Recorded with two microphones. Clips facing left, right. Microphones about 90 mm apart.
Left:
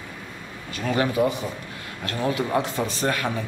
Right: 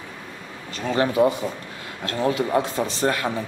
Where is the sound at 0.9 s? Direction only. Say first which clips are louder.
Right 3 dB; 25° right (ahead or behind).